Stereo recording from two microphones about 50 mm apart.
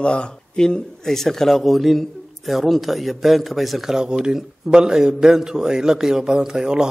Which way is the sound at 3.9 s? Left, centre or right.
Centre.